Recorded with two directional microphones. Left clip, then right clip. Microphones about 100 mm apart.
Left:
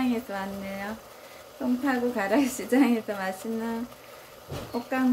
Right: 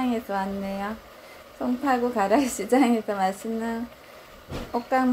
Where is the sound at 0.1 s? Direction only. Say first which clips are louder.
Right 4 dB; 15° right (ahead or behind).